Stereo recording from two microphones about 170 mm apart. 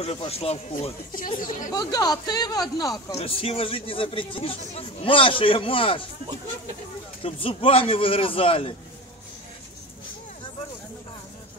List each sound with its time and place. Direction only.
0.0 s speech: 35° left (ahead or behind)
1.1 s speech: 55° left (ahead or behind)
1.7 s speech: 20° left (ahead or behind)
3.2 s speech: 35° left (ahead or behind)
7.2 s speech: 30° left (ahead or behind)